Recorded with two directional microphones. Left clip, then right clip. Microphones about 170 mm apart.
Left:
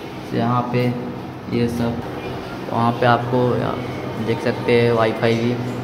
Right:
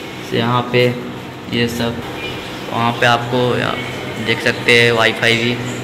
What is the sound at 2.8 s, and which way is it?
Speech, 15° left (ahead or behind).